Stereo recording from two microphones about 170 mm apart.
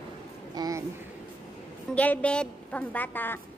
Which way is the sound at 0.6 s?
20° right (ahead or behind).